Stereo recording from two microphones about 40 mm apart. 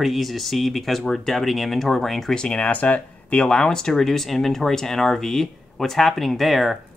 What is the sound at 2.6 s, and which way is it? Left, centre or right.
Speech, left.